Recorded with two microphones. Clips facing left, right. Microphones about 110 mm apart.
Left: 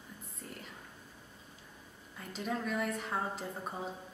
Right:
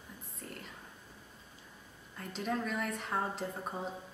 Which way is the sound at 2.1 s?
Centre (ahead or behind).